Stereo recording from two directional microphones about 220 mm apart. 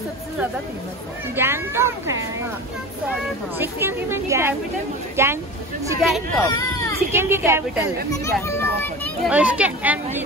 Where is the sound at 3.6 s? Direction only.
10° right (ahead or behind).